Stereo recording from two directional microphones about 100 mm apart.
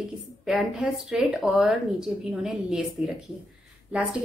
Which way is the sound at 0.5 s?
5° right (ahead or behind).